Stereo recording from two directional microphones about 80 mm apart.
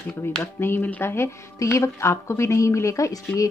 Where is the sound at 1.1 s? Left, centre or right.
Left.